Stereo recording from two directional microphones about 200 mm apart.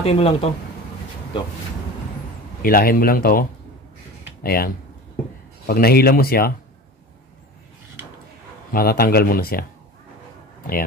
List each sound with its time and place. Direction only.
0.0 s speech: 30° left (ahead or behind)
2.6 s speech: 45° left (ahead or behind)
8.7 s speech: 50° left (ahead or behind)